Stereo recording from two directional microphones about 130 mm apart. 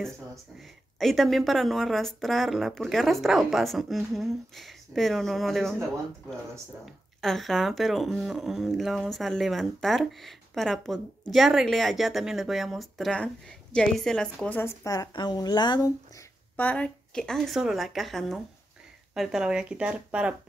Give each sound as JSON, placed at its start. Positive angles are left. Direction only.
{"t": 0.9, "sound": "speech", "side_deg": 0}
{"t": 7.2, "sound": "speech", "side_deg": 0}
{"t": 14.6, "sound": "speech", "side_deg": 25}
{"t": 16.5, "sound": "speech", "side_deg": 10}